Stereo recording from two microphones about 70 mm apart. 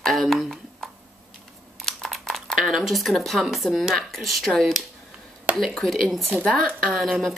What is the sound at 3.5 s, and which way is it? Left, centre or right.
Speech, centre.